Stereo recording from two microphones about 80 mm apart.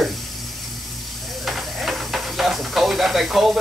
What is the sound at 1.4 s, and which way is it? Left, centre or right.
Hiss, centre.